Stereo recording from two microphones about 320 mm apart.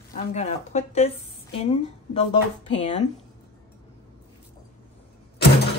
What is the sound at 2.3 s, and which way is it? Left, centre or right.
Speech, left.